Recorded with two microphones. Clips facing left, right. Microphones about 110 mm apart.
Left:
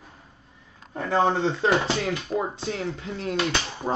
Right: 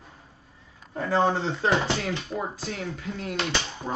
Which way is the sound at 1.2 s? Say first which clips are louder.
Left 4 dB; 20° left (ahead or behind).